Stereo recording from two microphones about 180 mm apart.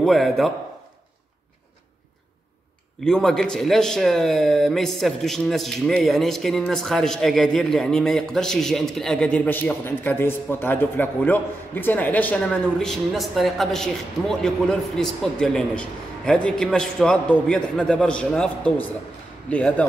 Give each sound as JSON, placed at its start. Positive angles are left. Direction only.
{"t": 0.0, "sound": "a man's voice", "side_deg": 0}
{"t": 3.0, "sound": "a man's voice", "side_deg": 0}